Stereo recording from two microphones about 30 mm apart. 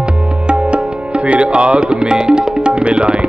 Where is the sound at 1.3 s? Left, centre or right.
Right.